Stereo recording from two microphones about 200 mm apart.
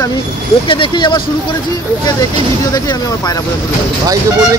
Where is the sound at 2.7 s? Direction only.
20° left (ahead or behind).